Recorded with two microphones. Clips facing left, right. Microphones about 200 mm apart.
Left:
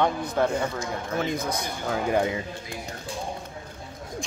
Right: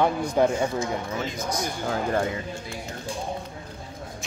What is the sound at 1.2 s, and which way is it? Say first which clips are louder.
Speech: left 1 dB; 55° left (ahead or behind).